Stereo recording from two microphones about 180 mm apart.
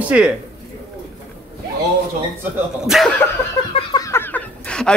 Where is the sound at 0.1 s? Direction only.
10° right (ahead or behind).